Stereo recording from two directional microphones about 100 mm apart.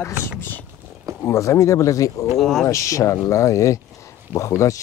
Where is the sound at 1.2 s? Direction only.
30° left (ahead or behind).